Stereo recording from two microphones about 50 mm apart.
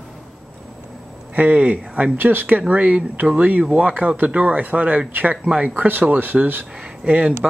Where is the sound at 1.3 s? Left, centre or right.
Right.